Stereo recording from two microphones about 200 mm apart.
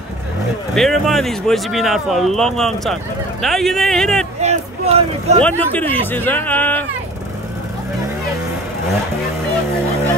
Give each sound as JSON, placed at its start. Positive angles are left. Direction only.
{"t": 0.7, "sound": "speech", "side_deg": 0}
{"t": 4.4, "sound": "speech", "side_deg": -35}
{"t": 5.4, "sound": "speech", "side_deg": 10}